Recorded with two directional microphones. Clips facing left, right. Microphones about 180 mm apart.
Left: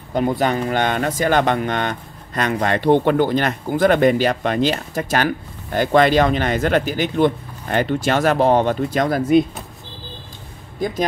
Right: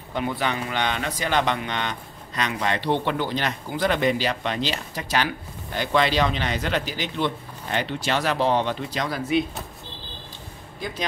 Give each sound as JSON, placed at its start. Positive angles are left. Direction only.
{"t": 0.1, "sound": "speech", "side_deg": 40}